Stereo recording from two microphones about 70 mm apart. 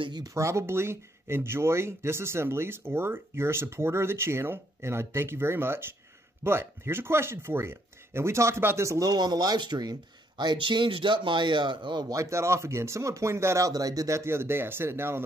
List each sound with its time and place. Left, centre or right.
0.3 s speech: right
9.1 s speech: right
12.2 s speech: right
13.7 s speech: right